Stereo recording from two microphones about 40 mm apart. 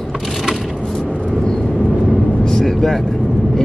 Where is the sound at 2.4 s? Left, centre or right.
Centre.